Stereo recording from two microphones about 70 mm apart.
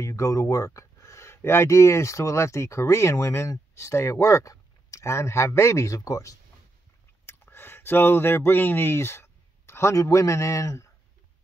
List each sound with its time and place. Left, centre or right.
0.0 s speech: left
7.2 s a sound: left
8.5 s speech: left